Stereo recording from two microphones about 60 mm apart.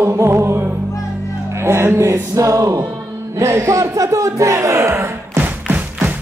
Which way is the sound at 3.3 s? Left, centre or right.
Right.